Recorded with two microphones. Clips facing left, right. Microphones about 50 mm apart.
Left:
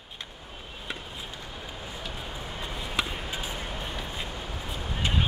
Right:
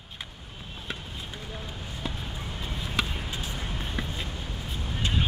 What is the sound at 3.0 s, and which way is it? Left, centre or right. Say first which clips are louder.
Basketball bounce: even; centre.